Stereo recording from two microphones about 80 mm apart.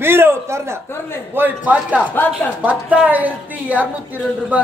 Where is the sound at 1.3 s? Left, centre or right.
Right.